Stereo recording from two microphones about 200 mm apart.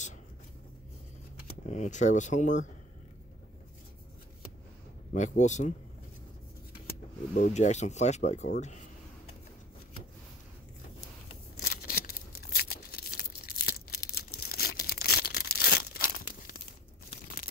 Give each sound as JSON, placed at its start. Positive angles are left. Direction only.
{"t": 1.7, "sound": "speech", "side_deg": 35}
{"t": 5.1, "sound": "speech", "side_deg": 35}
{"t": 6.9, "sound": "speech", "side_deg": 40}
{"t": 11.6, "sound": "a sound", "side_deg": 45}